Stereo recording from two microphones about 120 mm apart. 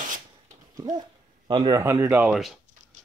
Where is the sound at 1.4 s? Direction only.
40° right (ahead or behind).